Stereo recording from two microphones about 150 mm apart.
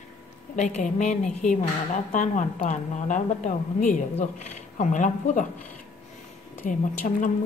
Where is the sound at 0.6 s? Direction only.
50° left (ahead or behind).